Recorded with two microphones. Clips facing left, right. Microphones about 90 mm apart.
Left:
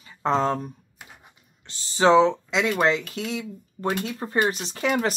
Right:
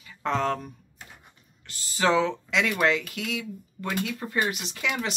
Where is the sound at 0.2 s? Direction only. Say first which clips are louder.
Left 4 dB; 25° left (ahead or behind).